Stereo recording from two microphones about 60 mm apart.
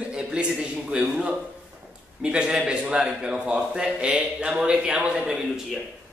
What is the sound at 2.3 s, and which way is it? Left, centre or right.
A man's voice, centre.